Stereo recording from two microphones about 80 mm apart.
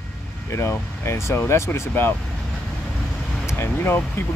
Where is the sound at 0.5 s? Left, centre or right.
Left.